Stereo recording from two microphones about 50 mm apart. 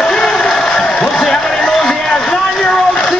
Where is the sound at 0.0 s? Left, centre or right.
Centre.